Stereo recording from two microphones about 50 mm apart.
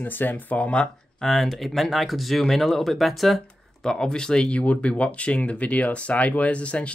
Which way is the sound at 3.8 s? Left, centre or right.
Centre.